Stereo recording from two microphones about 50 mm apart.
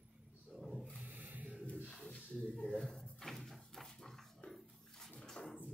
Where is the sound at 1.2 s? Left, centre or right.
Right.